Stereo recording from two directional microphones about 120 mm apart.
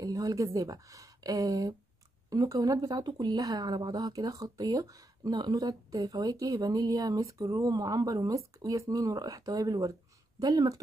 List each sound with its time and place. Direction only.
0.0 s a woman's voice: 30° right (ahead or behind)